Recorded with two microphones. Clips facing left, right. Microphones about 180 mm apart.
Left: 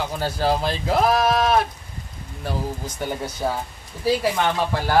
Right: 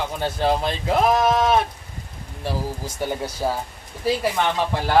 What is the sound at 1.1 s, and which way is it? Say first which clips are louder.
Speech: right 2 dB; 20° right (ahead or behind).